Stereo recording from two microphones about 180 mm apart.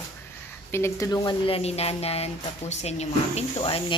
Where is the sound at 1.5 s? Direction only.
35° left (ahead or behind).